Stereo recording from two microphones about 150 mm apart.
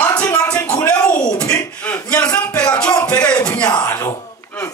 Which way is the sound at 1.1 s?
25° left (ahead or behind).